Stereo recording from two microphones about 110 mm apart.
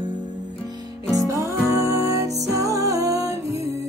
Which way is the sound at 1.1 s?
30° right (ahead or behind).